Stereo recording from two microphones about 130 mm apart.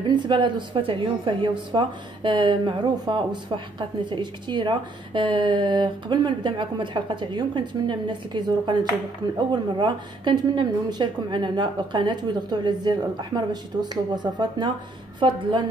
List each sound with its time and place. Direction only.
0.1 s speech: 35° right (ahead or behind)